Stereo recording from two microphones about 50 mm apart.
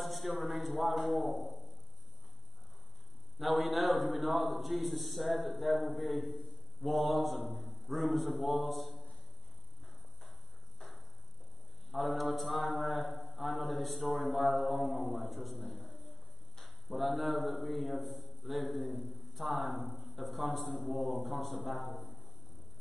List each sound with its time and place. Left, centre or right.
0.0 s a man's voice: centre
1.3 s a sound: right
3.3 s a man's voice: centre
11.9 s a man's voice: centre
19.7 s speech: centre
20.2 s a man's voice: centre
21.8 s a man's voice: left